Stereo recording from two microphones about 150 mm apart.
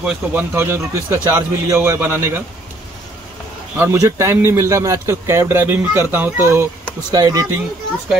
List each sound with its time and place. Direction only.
0.0 s a man's voice: 10° right (ahead or behind)
3.7 s a man's voice: 15° right (ahead or behind)